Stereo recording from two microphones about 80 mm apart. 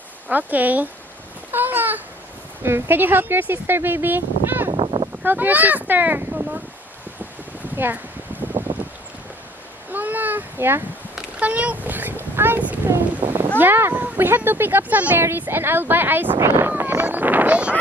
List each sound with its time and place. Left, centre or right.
0.3 s speech: right
1.5 s a sound: right
2.6 s speech: right
4.7 s a sound: right
5.2 s speech: right
7.7 s speech: right
8.3 s wind: right
8.7 s a sound: right
9.9 s a sound: right
11.1 s boat: centre
13.6 s speech: right
16.3 s wind noise: right; by 17.7 s centre